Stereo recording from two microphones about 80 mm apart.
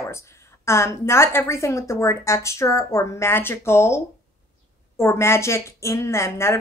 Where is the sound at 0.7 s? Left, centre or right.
Left.